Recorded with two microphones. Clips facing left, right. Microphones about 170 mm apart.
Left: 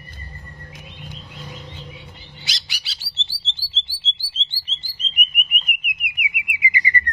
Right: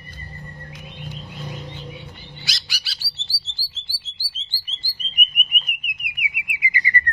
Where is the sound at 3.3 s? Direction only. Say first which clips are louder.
Left 3 dB; 20° left (ahead or behind).